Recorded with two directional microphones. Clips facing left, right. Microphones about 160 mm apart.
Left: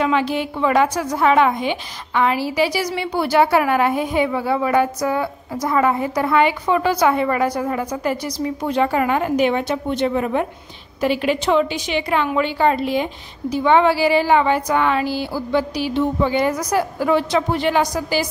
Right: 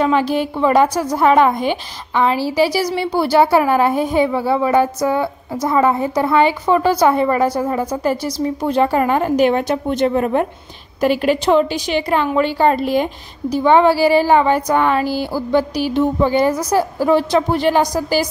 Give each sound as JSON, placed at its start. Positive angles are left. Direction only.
{"t": 0.0, "sound": "a woman's voice", "side_deg": -40}